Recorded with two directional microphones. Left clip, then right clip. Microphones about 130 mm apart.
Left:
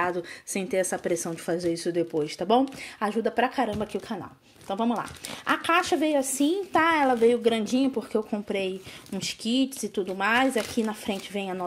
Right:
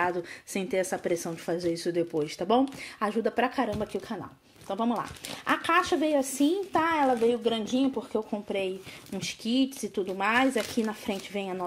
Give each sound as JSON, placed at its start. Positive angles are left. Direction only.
{"t": 0.0, "sound": "speech", "side_deg": 0}
{"t": 6.7, "sound": "speech", "side_deg": 15}
{"t": 7.2, "sound": "speech", "side_deg": 30}